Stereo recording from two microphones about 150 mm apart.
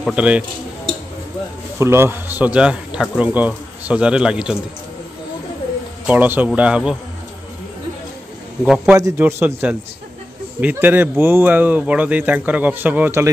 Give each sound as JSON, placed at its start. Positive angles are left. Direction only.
{"t": 0.0, "sound": "speech", "side_deg": -10}
{"t": 1.8, "sound": "speech", "side_deg": -15}
{"t": 6.0, "sound": "speech", "side_deg": -10}
{"t": 8.6, "sound": "a man's voice", "side_deg": -5}
{"t": 8.9, "sound": "a man's voice", "side_deg": -25}
{"t": 9.2, "sound": "speech", "side_deg": -10}